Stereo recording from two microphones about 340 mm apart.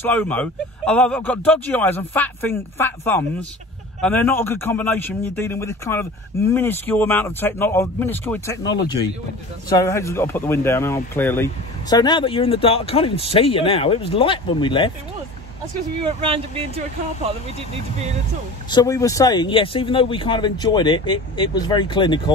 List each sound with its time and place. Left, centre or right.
0.0 s speech: centre
16.1 s speech: centre
18.7 s speech: centre